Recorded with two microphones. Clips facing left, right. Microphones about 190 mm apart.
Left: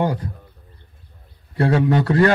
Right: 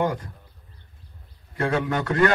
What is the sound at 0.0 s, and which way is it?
Speech, 35° left (ahead or behind).